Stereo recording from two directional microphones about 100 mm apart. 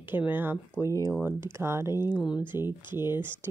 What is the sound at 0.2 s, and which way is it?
Speech, 20° right (ahead or behind).